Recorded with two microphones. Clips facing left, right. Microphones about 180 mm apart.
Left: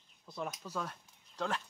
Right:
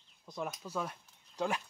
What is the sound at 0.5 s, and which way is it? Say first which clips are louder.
Speech: right 2 dB; 5° right (ahead or behind).